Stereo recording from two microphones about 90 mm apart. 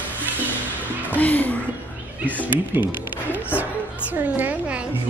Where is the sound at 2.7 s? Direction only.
20° right (ahead or behind).